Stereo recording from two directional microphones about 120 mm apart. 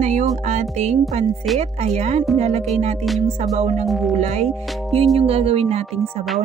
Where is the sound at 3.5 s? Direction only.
60° right (ahead or behind).